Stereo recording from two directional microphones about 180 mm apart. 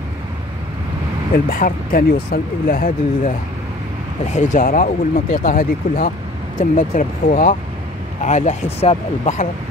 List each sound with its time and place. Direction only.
1.3 s speech: 50° left (ahead or behind)